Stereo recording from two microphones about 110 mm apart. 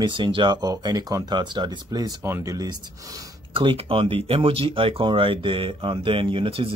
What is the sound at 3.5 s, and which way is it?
Speech, 50° right (ahead or behind).